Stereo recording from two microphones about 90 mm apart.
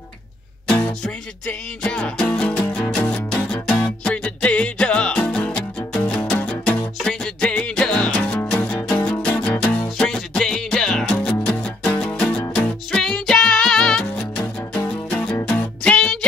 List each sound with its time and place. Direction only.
0.7 s music: 10° left (ahead or behind)
9.9 s music: 5° left (ahead or behind)